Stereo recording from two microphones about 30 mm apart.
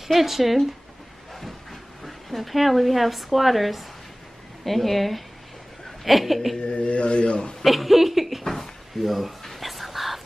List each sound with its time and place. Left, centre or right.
0.1 s speech: centre
1.3 s speech: centre
6.6 s speech: left
7.6 s speech: centre
9.4 s whispering: centre